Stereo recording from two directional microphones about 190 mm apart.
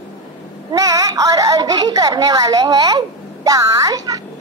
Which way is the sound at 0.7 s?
20° right (ahead or behind).